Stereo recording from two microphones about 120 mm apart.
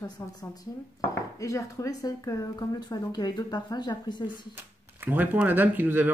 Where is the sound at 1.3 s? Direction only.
25° left (ahead or behind).